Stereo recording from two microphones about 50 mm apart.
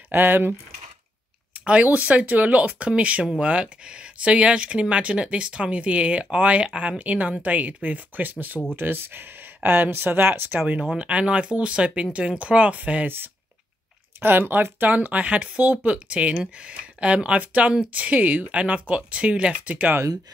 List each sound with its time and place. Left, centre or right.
0.1 s speech: right
1.6 s speech: right
10.9 s speech: right
14.2 s speech: right